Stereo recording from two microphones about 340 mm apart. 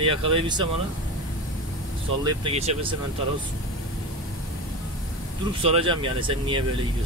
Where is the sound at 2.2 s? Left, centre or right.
Centre.